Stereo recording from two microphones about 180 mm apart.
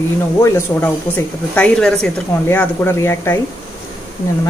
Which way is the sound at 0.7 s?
15° left (ahead or behind).